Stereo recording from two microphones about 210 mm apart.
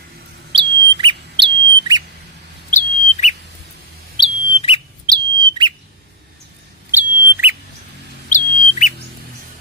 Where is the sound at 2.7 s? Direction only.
35° left (ahead or behind).